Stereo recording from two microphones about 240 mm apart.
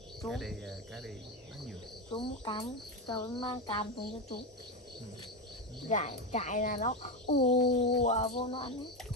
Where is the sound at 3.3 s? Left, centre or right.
Left.